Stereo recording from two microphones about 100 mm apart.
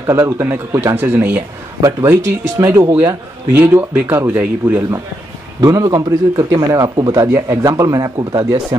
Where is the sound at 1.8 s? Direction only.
30° right (ahead or behind).